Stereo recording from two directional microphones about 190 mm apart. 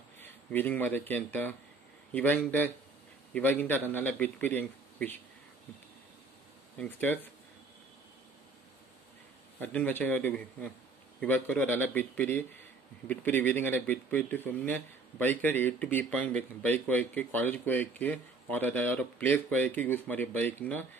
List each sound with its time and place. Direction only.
0.2 s speech: 10° left (ahead or behind)
6.8 s speech: 10° left (ahead or behind)
9.6 s speech: 10° left (ahead or behind)